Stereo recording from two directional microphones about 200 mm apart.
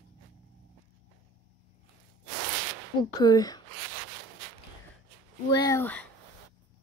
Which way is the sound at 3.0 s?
20° left (ahead or behind).